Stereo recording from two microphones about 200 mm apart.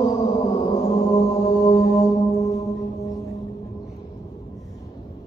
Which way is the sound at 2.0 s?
15° left (ahead or behind).